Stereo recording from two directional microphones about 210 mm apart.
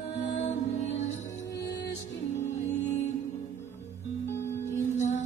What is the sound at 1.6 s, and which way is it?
Music, 55° left (ahead or behind).